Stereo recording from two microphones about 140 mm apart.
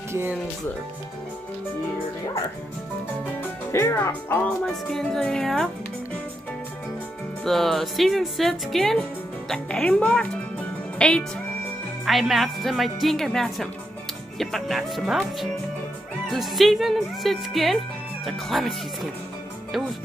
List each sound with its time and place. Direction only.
0.1 s speech: 15° right (ahead or behind)
3.7 s speech: 20° left (ahead or behind)
4.6 s a woman's voice: 5° left (ahead or behind)
7.4 s a woman's voice: centre (ahead or behind)